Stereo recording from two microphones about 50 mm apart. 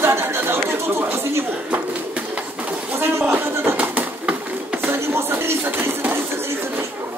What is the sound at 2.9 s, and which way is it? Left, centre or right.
Speech, right.